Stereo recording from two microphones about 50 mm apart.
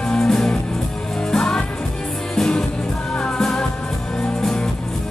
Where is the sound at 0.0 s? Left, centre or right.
Centre.